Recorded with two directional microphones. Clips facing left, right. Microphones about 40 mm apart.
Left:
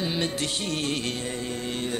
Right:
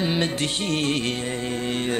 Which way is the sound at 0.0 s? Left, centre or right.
Right.